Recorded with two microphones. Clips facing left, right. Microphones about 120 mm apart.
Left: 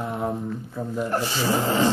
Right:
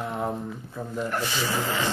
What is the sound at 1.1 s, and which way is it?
Speech, 35° left (ahead or behind).